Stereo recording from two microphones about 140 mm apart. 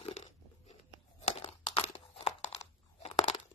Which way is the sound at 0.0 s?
50° left (ahead or behind).